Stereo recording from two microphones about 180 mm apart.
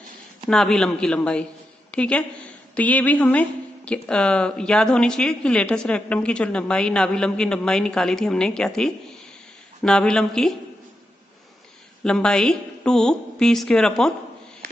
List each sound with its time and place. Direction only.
0.5 s a woman's voice: 5° left (ahead or behind)
12.0 s a woman's voice: 5° left (ahead or behind)